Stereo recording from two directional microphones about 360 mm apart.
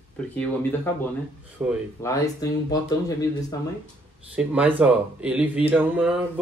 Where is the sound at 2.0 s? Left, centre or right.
Centre.